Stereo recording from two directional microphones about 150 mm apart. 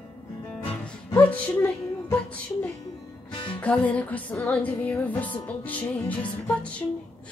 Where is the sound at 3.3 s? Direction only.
30° left (ahead or behind).